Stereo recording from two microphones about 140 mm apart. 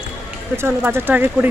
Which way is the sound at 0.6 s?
15° right (ahead or behind).